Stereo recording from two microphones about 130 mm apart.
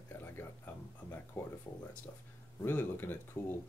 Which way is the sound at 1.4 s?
20° left (ahead or behind).